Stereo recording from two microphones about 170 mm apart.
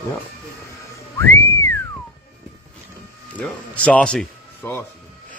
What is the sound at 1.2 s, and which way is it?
Whistling, 15° left (ahead or behind).